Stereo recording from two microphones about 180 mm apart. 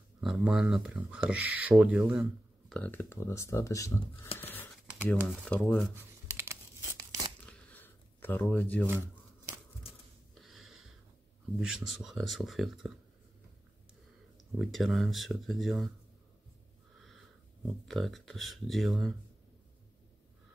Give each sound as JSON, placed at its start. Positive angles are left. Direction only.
{"t": 0.2, "sound": "speech", "side_deg": -5}
{"t": 2.7, "sound": "speech", "side_deg": 10}
{"t": 4.4, "sound": "a sound", "side_deg": 10}
{"t": 5.5, "sound": "speech", "side_deg": 5}
{"t": 5.9, "sound": "tearing", "side_deg": -15}
{"t": 7.4, "sound": "a sound", "side_deg": 10}
{"t": 8.8, "sound": "shuffling cards", "side_deg": -15}
{"t": 10.3, "sound": "a sound", "side_deg": 0}
{"t": 11.6, "sound": "speech", "side_deg": -5}
{"t": 14.6, "sound": "speech", "side_deg": 0}
{"t": 17.8, "sound": "speech", "side_deg": 0}